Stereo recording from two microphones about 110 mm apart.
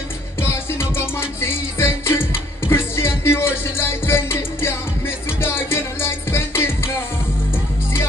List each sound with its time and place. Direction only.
0.4 s music: 20° left (ahead or behind)